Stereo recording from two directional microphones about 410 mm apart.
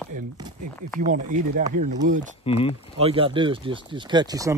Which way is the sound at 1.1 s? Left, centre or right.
Centre.